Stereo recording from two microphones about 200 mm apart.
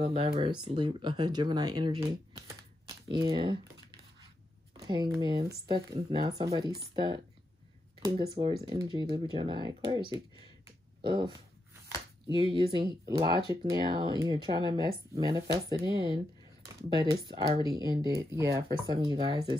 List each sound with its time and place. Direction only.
0.1 s speech: 25° right (ahead or behind)
2.9 s a sound: 20° right (ahead or behind)
4.7 s speech: 15° right (ahead or behind)
8.0 s speech: 25° right (ahead or behind)
16.9 s speech: 20° right (ahead or behind)